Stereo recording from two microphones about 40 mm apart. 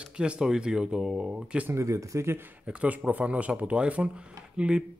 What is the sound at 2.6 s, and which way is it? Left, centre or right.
Speech, right.